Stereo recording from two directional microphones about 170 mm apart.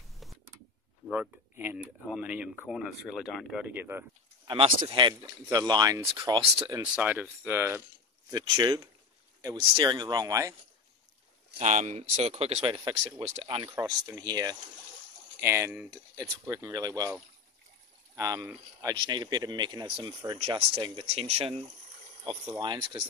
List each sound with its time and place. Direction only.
1.1 s speech: 10° right (ahead or behind)
4.5 s speech: 30° right (ahead or behind)
6.8 s speech: 10° right (ahead or behind)
8.3 s speech: 25° right (ahead or behind)
11.5 s speech: 45° right (ahead or behind)
13.7 s speech: 20° right (ahead or behind)